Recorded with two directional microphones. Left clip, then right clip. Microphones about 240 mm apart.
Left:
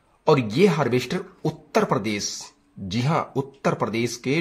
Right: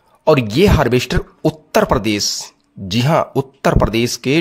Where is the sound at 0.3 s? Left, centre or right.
Right.